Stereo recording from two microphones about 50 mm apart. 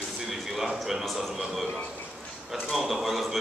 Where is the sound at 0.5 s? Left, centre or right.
Centre.